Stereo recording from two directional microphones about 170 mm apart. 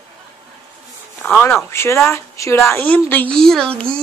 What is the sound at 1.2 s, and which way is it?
Speech, 10° left (ahead or behind).